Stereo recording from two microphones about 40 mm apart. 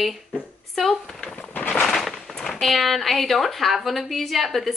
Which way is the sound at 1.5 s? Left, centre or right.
Left.